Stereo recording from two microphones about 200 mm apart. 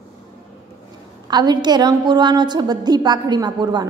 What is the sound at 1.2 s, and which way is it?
A woman's voice, 20° right (ahead or behind).